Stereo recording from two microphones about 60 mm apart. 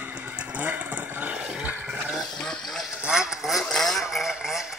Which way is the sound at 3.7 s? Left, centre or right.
Centre.